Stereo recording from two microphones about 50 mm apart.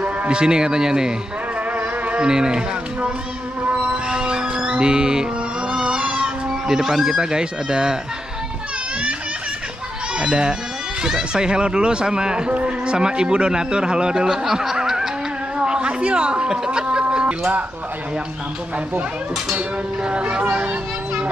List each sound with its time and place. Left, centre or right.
0.0 s speech: right
1.8 s insect: right
2.2 s speech: centre
3.7 s music: right
5.7 s a sound: centre
10.1 s speech: centre
15.6 s a sound: centre
17.0 s music: right
19.5 s speech: right